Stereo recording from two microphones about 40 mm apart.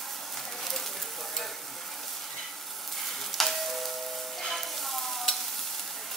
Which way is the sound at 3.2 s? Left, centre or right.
Centre.